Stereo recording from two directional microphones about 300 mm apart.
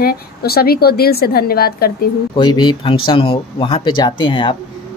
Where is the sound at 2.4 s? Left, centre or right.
Centre.